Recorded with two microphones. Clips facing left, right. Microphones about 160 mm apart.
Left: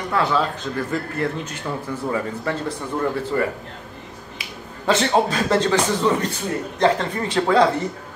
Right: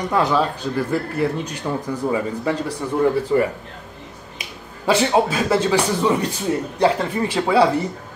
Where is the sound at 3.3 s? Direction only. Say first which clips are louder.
Right 3 dB; 20° right (ahead or behind).